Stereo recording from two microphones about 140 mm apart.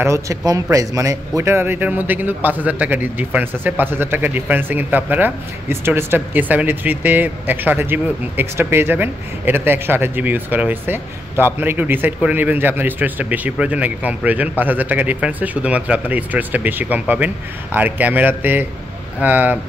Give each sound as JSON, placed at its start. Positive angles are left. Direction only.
{"t": 0.0, "sound": "a man's voice", "side_deg": -20}